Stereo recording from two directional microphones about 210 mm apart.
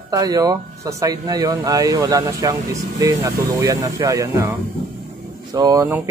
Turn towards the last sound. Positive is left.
turn(degrees=-15)  # may be behind; listen again after turning